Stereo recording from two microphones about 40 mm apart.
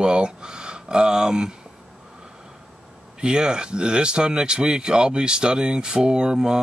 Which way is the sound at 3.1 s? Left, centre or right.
Right.